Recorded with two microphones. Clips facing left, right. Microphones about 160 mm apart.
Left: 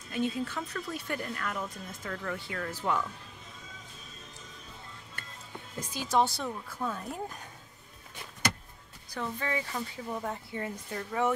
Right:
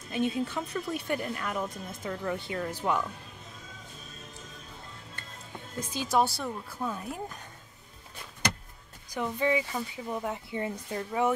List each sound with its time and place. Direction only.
0.1 s a woman's voice: 20° right (ahead or behind)
6.0 s a woman's voice: 5° right (ahead or behind)
9.1 s a woman's voice: 15° right (ahead or behind)